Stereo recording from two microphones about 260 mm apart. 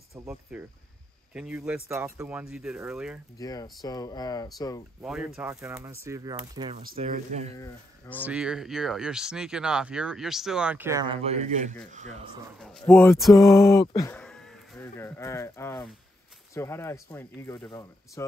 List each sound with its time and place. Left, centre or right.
0.1 s speech: centre
3.3 s speech: centre
5.0 s speech: centre
6.8 s speech: right
7.5 s speech: centre
8.3 s speech: centre; by 12.3 s right
12.5 s speech: centre